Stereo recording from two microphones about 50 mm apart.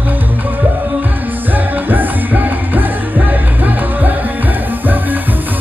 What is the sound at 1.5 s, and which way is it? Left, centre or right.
Music, right.